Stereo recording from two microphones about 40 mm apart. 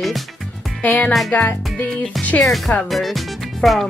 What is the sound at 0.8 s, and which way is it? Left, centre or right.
Speech, left.